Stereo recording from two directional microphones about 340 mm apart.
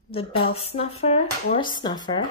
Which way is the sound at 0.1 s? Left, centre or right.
Centre.